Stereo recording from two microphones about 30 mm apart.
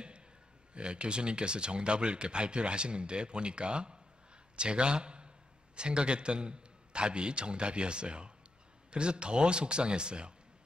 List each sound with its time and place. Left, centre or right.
0.7 s a man's voice: right